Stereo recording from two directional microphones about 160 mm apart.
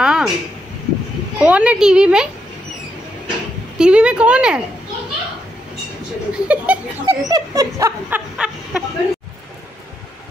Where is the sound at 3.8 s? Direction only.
5° right (ahead or behind).